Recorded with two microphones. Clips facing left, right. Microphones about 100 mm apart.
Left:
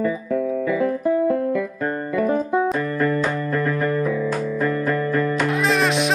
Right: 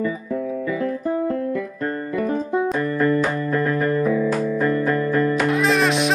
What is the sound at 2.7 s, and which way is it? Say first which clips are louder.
Music: right 2 dB; centre (ahead or behind).